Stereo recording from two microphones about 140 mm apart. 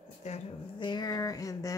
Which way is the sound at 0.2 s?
55° left (ahead or behind).